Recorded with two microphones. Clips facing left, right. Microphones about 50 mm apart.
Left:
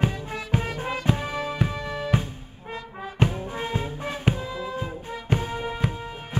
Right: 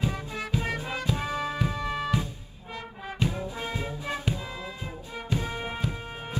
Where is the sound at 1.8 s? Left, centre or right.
Right.